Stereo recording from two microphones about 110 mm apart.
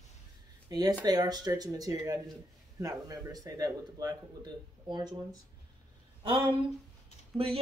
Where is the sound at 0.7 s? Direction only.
35° right (ahead or behind).